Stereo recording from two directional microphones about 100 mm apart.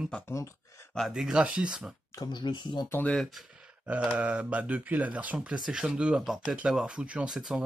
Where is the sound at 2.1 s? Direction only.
45° left (ahead or behind).